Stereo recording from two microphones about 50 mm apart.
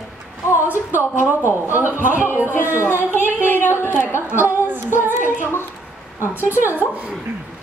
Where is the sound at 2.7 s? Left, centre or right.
Right.